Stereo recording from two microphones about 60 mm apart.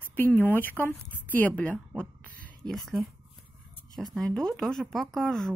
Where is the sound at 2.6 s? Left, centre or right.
Centre.